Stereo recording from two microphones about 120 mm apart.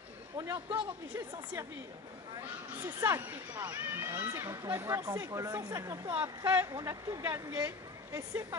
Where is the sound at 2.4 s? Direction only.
25° right (ahead or behind).